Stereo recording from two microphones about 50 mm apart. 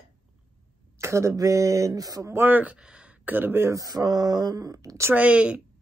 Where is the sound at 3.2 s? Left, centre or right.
Right.